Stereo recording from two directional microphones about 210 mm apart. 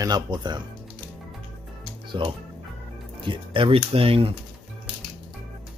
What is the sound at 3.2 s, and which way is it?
Speech, 25° right (ahead or behind).